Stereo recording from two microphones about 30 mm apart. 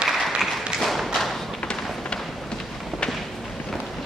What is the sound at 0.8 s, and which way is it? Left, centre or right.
Thump, centre.